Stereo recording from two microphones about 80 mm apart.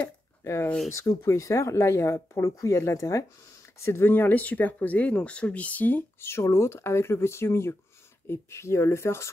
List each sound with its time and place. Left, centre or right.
0.4 s speech: left
6.3 s speech: left